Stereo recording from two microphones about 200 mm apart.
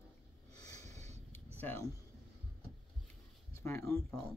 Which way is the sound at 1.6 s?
10° left (ahead or behind).